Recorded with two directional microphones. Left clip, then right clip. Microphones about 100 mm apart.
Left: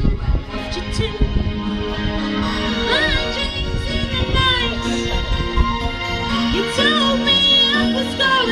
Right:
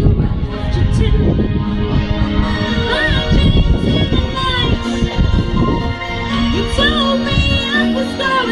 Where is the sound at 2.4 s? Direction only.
15° left (ahead or behind).